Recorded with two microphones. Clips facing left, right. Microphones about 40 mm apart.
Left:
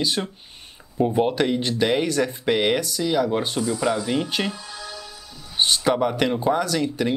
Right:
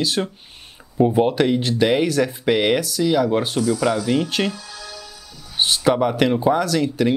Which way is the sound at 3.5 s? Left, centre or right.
Centre.